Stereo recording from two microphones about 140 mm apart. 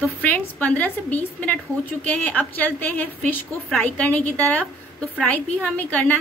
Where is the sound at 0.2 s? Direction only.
10° left (ahead or behind).